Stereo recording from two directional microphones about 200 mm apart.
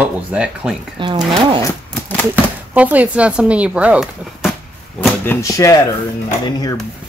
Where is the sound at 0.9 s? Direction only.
20° right (ahead or behind).